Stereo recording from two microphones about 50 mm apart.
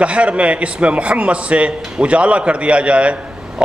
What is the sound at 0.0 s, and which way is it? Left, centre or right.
A man's voice, right.